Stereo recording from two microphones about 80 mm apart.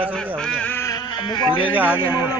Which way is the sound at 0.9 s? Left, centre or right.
Left.